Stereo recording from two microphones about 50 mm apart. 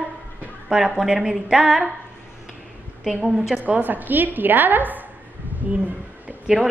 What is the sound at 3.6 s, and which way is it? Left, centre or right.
A woman's voice, right.